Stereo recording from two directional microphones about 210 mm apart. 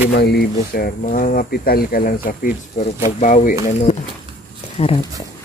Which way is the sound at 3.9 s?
30° left (ahead or behind).